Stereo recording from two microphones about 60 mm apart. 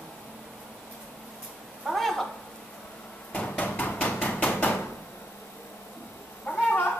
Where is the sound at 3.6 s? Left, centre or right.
Left.